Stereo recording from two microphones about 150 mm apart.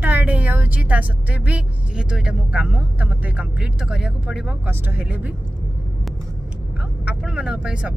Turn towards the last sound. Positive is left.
turn(degrees=-5)  # may be behind; listen again after turning